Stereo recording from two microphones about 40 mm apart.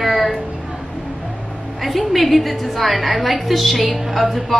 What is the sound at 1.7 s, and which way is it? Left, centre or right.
A woman's voice, centre.